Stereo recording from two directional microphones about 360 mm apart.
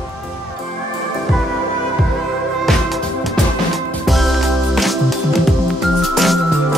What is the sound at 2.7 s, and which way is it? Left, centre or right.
Music, centre.